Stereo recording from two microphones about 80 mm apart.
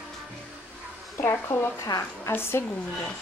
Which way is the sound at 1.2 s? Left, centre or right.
Left.